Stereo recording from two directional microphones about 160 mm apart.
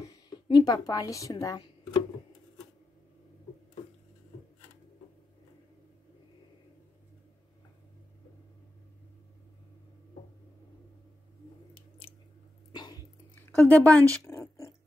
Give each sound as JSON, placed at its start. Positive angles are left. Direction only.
{"t": 0.0, "sound": "speech", "side_deg": 25}
{"t": 12.7, "sound": "dog", "side_deg": 25}
{"t": 13.3, "sound": "a sound", "side_deg": 10}